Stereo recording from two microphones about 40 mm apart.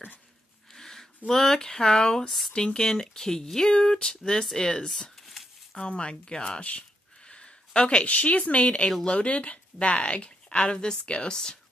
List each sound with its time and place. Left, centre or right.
0.7 s speech: centre
2.2 s speech: centre
2.5 s a woman's voice: centre
5.2 s a sound: centre
5.8 s a woman's voice: left
7.2 s a sound: left
8.1 s a woman's voice: left
9.3 s a woman's voice: left